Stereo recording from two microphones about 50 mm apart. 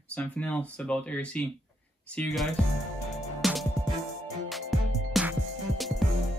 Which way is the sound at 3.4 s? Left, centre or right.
Centre.